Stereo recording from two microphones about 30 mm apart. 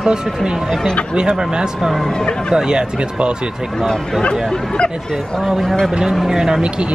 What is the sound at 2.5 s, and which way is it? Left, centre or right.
Speech, right.